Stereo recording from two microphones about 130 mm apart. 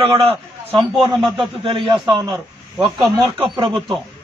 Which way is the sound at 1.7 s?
40° right (ahead or behind).